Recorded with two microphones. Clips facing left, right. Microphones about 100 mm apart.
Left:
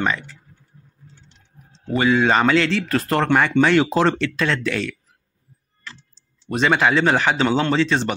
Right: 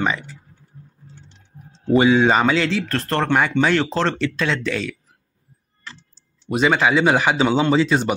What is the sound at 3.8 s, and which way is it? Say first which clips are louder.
Speech: left 3 dB; 10° left (ahead or behind).